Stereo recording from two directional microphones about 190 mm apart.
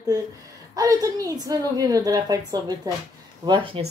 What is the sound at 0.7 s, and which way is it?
A woman's voice, 20° right (ahead or behind).